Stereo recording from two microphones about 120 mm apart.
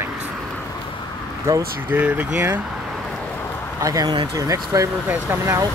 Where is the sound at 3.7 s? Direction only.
30° right (ahead or behind).